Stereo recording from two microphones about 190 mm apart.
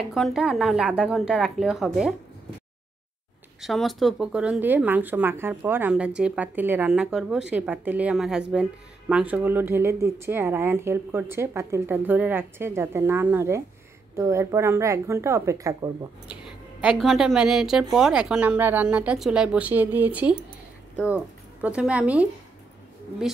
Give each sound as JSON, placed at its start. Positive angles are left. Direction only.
{"t": 0.1, "sound": "speech", "side_deg": 0}
{"t": 3.6, "sound": "speech", "side_deg": 0}
{"t": 17.0, "sound": "speech", "side_deg": 0}